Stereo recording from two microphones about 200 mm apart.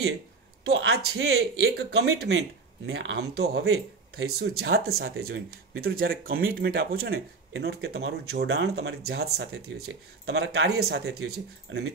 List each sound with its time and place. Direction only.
0.7 s speech: 70° right (ahead or behind); by 1.7 s 90° right
1.8 s speech: 50° right (ahead or behind)
3.6 s speech: 90° right
4.4 s speech: 55° right (ahead or behind)
9.6 s speech: 90° right
10.2 s speech: 60° right (ahead or behind)
10.8 s speech: 55° right (ahead or behind)
11.7 s speech: 70° right (ahead or behind)